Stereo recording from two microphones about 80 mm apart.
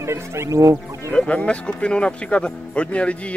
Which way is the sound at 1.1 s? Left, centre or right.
Centre.